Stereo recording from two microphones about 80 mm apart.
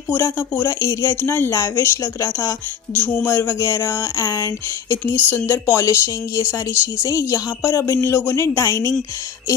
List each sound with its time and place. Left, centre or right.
0.2 s speech: left
2.9 s music: left
3.3 s speech: left
5.0 s speech: left